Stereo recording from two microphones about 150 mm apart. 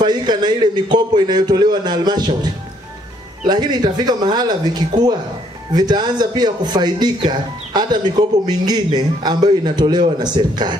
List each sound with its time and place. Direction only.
0.0 s speech: 30° right (ahead or behind)